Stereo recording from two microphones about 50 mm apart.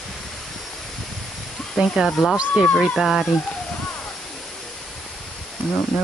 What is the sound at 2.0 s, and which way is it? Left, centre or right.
Speech, centre.